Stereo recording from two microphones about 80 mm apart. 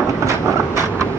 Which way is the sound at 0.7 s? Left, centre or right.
Right.